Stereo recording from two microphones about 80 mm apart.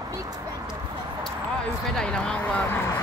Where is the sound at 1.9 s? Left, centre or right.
Centre.